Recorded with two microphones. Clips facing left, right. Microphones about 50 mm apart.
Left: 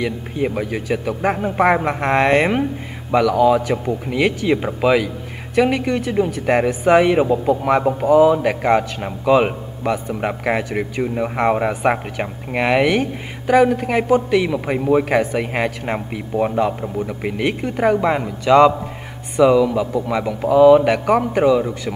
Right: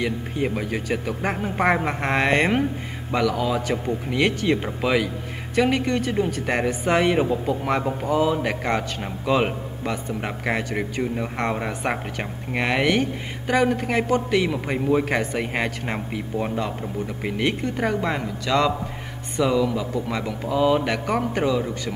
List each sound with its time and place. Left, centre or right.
0.0 s a man's voice: centre
21.5 s a man's voice: centre